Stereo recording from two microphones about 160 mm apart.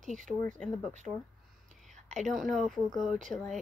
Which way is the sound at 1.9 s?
45° right (ahead or behind).